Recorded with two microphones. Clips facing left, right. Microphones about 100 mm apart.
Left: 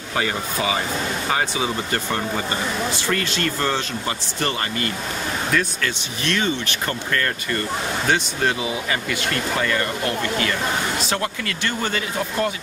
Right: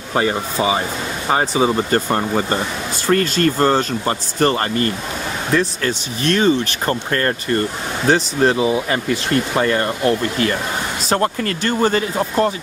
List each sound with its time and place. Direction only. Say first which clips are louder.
0.1 s speech: right 5 dB; 30° right (ahead or behind)